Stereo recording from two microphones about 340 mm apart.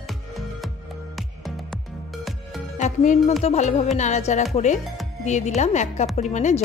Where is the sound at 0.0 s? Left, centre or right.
Centre.